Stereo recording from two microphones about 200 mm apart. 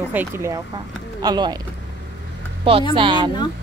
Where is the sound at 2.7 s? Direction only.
25° right (ahead or behind).